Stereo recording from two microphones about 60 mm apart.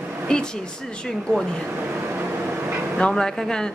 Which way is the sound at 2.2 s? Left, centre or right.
Right.